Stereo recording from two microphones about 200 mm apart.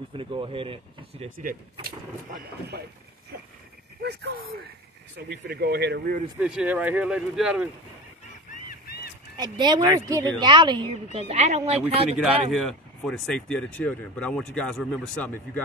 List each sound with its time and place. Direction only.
0.1 s speech: 25° right (ahead or behind)
1.4 s speech: 45° right (ahead or behind)
4.0 s speech: 55° right (ahead or behind)
6.4 s speech: 5° right (ahead or behind)
8.6 s a sound: 50° left (ahead or behind)
9.4 s speech: 20° right (ahead or behind)
11.2 s speech: 35° right (ahead or behind)
12.2 s speech: centre (ahead or behind)